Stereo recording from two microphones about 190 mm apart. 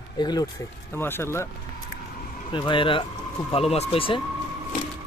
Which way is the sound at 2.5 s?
25° left (ahead or behind).